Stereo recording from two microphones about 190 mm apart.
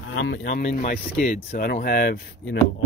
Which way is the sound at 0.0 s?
80° left.